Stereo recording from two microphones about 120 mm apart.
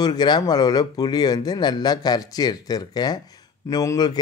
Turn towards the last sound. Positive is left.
turn(degrees=30)  # may be behind; listen again after turning